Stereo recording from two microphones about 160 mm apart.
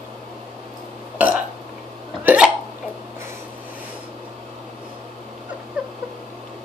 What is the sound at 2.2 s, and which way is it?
Hiccup, 10° right (ahead or behind).